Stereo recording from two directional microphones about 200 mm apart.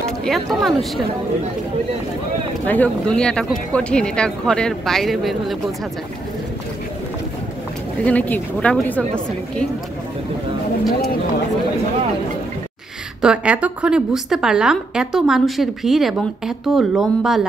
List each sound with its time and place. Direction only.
0.2 s a woman's voice: centre (ahead or behind)
2.6 s a woman's voice: 10° left (ahead or behind)
8.0 s a woman's voice: 5° left (ahead or behind)
13.2 s a woman's voice: 5° right (ahead or behind)